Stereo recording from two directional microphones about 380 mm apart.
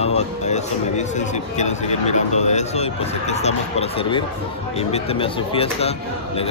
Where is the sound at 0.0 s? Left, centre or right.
Centre.